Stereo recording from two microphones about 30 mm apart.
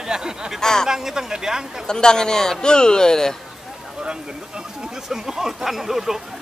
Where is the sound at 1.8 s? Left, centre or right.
Left.